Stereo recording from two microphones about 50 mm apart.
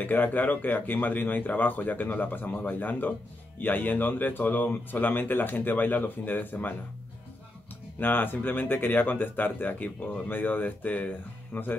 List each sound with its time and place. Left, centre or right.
0.0 s speech: left
8.0 s speech: left